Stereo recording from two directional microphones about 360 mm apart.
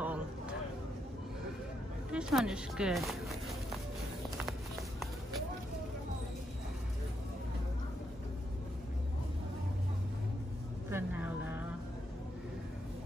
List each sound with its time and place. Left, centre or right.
0.0 s a sound: centre
2.1 s speech: centre
10.9 s vehicle: centre